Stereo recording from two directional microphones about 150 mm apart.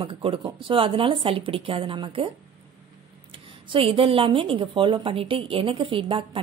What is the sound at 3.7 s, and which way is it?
Speech, 35° right (ahead or behind).